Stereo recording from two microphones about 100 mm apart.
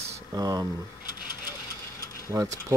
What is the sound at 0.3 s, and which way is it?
Speech, 40° right (ahead or behind).